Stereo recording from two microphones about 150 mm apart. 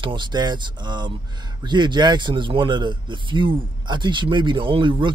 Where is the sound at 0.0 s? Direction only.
30° right (ahead or behind).